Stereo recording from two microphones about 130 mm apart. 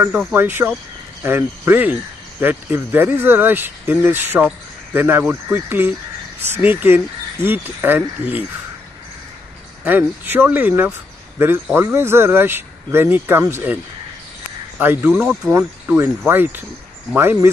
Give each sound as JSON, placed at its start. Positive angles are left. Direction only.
{"t": 0.0, "sound": "speech", "side_deg": -15}
{"t": 9.8, "sound": "speech", "side_deg": -15}
{"t": 14.8, "sound": "speech", "side_deg": -15}